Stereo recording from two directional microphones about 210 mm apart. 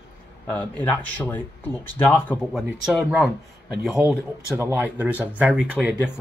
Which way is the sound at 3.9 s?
10° right (ahead or behind).